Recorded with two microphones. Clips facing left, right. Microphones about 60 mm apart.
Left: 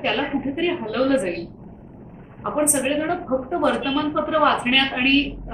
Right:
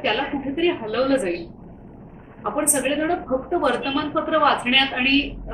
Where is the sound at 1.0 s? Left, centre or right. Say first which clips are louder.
Left 1 dB; centre.